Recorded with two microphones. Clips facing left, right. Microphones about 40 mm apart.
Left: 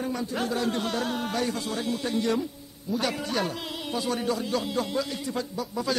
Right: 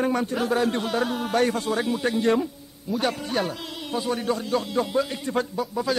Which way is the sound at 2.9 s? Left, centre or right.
Centre.